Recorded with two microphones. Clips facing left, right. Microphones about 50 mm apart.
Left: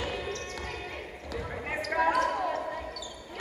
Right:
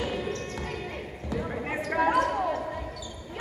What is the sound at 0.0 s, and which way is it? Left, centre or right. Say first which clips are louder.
Basketball bounce: right 3 dB; centre.